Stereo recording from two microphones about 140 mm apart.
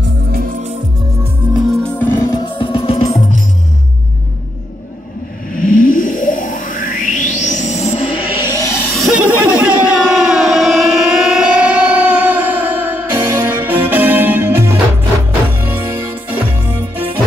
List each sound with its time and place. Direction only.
0.3 s music: 90° right
2.0 s music: 20° left (ahead or behind)
2.5 s music: 40° left (ahead or behind)
5.5 s music: 75° left (ahead or behind); by 8.2 s 50° left (ahead or behind)
8.4 s music: 20° left (ahead or behind)
8.9 s a sound: centre (ahead or behind); by 14.8 s 15° right (ahead or behind)
15.6 s music: 15° right (ahead or behind)